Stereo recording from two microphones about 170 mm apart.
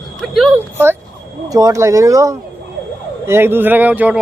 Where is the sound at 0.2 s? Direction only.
Centre (ahead or behind).